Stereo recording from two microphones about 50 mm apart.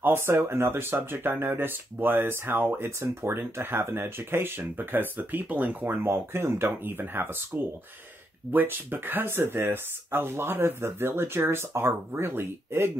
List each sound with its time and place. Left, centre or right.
0.0 s speech: right
3.0 s speech: right
6.0 s speech: right